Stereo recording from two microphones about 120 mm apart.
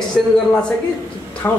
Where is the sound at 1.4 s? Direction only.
20° left (ahead or behind).